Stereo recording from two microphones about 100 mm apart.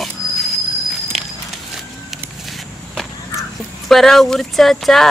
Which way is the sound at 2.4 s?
Centre (ahead or behind).